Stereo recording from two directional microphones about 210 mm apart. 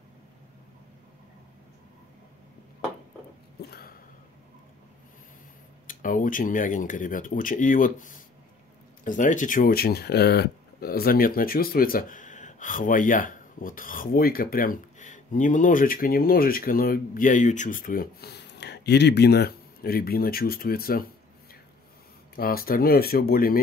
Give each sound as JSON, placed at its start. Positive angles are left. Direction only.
{"t": 3.6, "sound": "a sound", "side_deg": 50}
{"t": 5.9, "sound": "speech", "side_deg": 40}
{"t": 22.3, "sound": "speech", "side_deg": 45}